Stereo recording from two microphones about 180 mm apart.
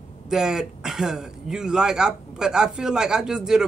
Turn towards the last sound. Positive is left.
turn(degrees=-5)  # may be behind; listen again after turning